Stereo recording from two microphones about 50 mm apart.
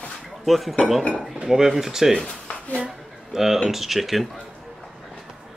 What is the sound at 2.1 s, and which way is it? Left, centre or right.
Speech, centre.